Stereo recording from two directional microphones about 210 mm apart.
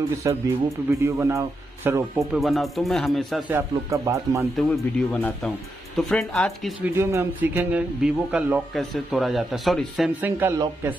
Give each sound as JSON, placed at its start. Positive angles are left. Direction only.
{"t": 0.2, "sound": "speech", "side_deg": -15}
{"t": 2.1, "sound": "a man's voice", "side_deg": 0}
{"t": 4.6, "sound": "a man's voice", "side_deg": 5}
{"t": 7.0, "sound": "a man's voice", "side_deg": -10}